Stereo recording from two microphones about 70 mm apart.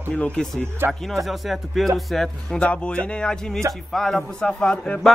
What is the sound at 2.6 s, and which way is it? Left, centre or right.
A man's voice, centre.